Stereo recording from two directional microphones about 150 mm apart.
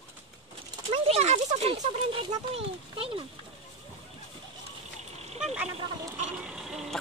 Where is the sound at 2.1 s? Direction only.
35° right (ahead or behind).